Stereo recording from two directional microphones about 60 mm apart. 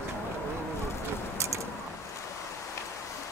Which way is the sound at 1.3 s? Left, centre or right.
Right.